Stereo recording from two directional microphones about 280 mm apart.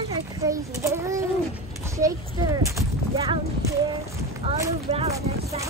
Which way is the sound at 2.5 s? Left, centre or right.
Centre.